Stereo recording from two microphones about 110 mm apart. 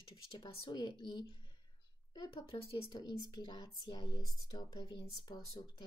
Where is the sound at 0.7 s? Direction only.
40° left (ahead or behind).